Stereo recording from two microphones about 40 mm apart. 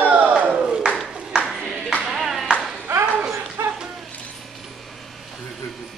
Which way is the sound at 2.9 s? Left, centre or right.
Right.